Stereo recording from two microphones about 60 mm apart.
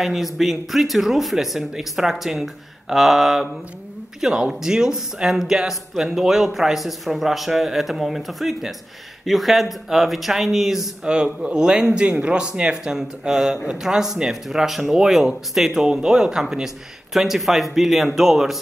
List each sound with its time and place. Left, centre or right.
0.0 s speech: centre
11.1 s speech: centre